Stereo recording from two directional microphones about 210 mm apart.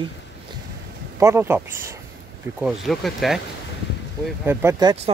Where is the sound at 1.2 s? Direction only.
15° right (ahead or behind).